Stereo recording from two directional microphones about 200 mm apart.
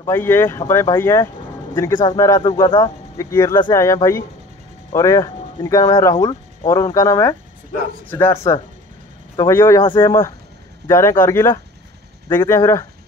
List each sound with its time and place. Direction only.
0.0 s speech: 10° left (ahead or behind)